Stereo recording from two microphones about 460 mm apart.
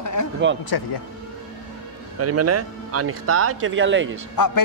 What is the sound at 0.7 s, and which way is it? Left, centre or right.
Speech, left.